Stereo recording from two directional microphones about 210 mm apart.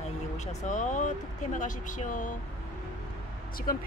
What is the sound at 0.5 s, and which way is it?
Speech, 35° left (ahead or behind).